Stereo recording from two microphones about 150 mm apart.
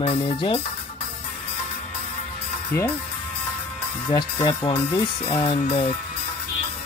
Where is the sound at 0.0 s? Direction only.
35° left (ahead or behind).